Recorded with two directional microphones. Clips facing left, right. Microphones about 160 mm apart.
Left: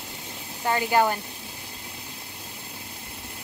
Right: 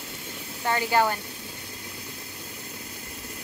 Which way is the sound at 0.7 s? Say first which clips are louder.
Left 1 dB; 20° left (ahead or behind).